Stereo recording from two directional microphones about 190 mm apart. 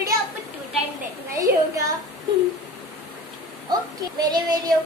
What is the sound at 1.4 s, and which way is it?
Speech, 15° right (ahead or behind).